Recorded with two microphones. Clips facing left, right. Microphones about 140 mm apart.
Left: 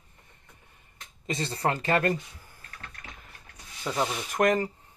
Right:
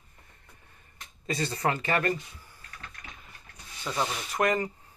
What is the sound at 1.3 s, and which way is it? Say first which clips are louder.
Speech: even; 25° left (ahead or behind).